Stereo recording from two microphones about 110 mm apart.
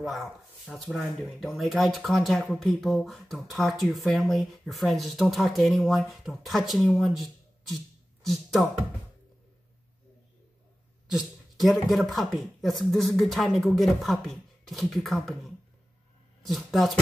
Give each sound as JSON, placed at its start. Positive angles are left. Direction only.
{"t": 0.0, "sound": "speech", "side_deg": 0}
{"t": 11.1, "sound": "a sound", "side_deg": -5}
{"t": 11.9, "sound": "speech", "side_deg": 0}